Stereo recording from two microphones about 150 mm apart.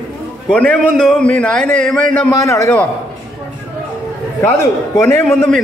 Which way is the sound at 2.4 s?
20° left (ahead or behind).